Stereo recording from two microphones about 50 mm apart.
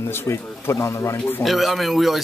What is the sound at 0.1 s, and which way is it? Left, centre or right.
Speech, left.